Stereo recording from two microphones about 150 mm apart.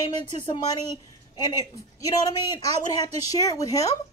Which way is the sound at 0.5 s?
25° left (ahead or behind).